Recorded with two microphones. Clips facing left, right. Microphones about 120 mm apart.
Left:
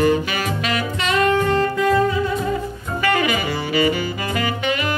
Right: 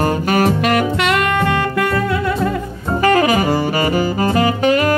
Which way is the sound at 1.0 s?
75° right (ahead or behind).